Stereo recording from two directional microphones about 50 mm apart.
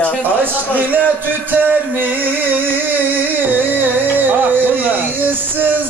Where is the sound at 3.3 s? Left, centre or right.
Right.